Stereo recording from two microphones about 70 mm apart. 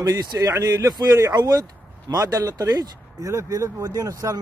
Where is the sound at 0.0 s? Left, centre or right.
Right.